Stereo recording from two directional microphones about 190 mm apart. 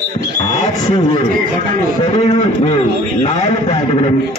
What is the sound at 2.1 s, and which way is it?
A man's voice, 30° left (ahead or behind).